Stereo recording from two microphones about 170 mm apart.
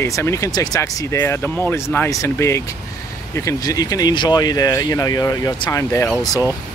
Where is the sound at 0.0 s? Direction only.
15° left (ahead or behind).